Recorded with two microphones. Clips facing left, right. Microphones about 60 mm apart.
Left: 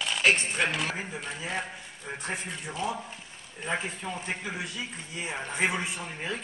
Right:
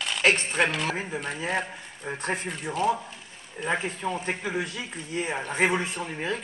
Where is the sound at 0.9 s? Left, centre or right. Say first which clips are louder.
Right 4 dB; right.